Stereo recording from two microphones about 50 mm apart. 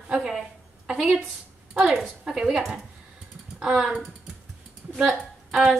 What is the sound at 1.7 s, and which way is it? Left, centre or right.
Speech, centre.